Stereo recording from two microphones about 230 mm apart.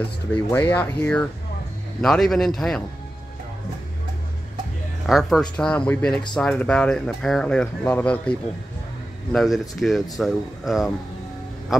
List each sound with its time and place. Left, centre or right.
0.5 s speech: centre
5.0 s speech: centre